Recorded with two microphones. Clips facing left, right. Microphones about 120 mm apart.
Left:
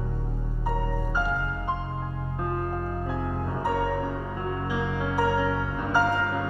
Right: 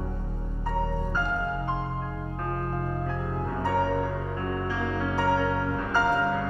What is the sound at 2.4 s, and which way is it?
Music, 15° left (ahead or behind).